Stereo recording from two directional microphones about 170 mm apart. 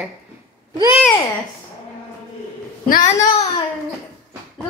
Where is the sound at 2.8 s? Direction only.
50° left (ahead or behind).